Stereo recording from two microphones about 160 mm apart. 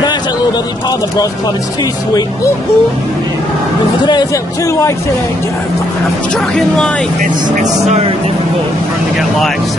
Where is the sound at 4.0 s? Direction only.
25° left (ahead or behind).